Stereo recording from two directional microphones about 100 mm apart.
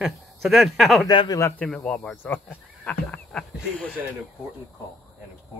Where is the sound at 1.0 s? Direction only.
45° left (ahead or behind).